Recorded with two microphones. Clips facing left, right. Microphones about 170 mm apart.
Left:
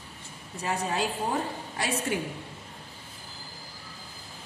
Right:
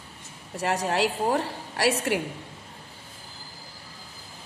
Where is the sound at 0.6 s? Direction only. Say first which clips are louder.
Right 4 dB; 75° right (ahead or behind).